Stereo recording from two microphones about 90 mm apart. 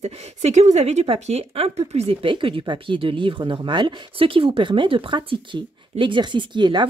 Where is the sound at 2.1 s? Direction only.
75° right (ahead or behind).